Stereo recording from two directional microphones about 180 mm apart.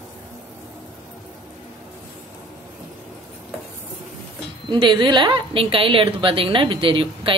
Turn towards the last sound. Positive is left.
turn(degrees=-30)  # may be behind; listen again after turning